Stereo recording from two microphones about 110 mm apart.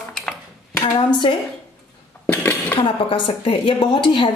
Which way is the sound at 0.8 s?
45° left (ahead or behind).